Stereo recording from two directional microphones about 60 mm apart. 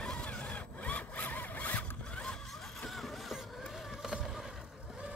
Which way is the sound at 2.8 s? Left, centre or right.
Centre.